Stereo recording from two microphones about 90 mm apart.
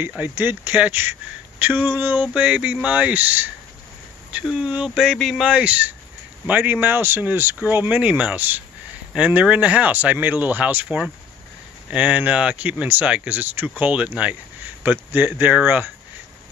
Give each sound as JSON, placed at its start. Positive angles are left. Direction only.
{"t": 0.2, "sound": "speech", "side_deg": -20}
{"t": 4.5, "sound": "a sound", "side_deg": -5}
{"t": 5.4, "sound": "speech", "side_deg": -15}